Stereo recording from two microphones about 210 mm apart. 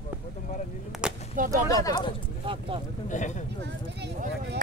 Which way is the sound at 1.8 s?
20° left (ahead or behind).